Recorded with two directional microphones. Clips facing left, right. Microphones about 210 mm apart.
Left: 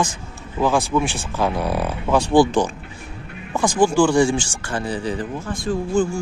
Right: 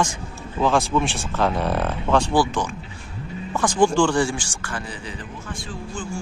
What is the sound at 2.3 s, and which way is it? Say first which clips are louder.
Speech: left 6 dB; 20° left (ahead or behind).